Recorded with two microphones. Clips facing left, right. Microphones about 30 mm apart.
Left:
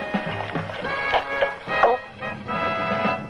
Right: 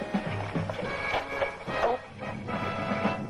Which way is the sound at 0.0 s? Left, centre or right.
Left.